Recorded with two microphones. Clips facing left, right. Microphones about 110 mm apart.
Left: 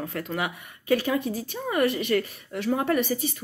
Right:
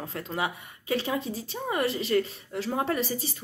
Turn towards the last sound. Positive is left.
turn(degrees=-30)  # may be behind; listen again after turning